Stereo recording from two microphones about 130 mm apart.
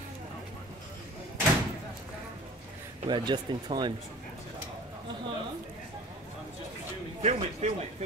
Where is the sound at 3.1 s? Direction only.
35° right (ahead or behind).